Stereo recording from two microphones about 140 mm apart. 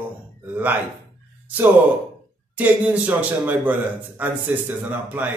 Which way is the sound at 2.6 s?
10° right (ahead or behind).